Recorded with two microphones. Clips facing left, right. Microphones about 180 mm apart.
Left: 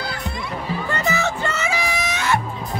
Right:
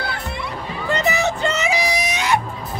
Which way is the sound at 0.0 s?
60° right (ahead or behind).